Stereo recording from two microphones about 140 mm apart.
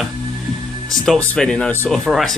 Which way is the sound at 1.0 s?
5° left (ahead or behind).